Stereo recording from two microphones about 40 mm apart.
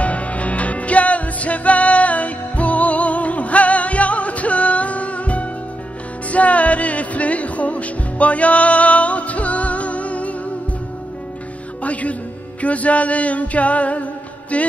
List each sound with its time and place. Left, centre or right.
0.0 s music: left
11.8 s music: left
12.6 s a sound: left